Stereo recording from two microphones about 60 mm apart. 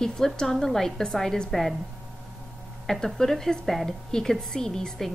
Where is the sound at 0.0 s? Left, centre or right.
Centre.